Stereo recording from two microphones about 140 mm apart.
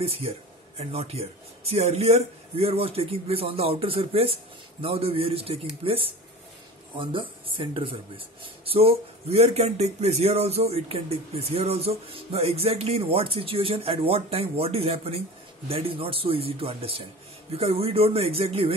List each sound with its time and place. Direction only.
0.0 s speech: 45° right (ahead or behind)